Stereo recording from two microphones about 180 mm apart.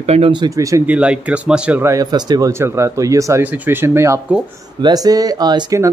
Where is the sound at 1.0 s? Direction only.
5° right (ahead or behind).